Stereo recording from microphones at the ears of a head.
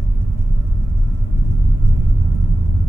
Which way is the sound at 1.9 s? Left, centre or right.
Right.